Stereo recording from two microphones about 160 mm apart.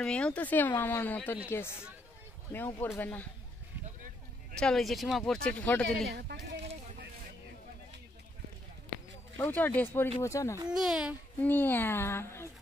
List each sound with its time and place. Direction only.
0.0 s speech: 5° left (ahead or behind)
2.5 s speech: 10° left (ahead or behind)
4.6 s speech: 5° left (ahead or behind)
5.9 s speech: 80° right
9.4 s speech: 10° left (ahead or behind)
10.7 s speech: 5° right (ahead or behind)
11.4 s speech: 10° left (ahead or behind)